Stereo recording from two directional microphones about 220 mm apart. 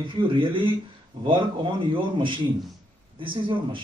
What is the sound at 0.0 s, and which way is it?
Speech, 20° right (ahead or behind).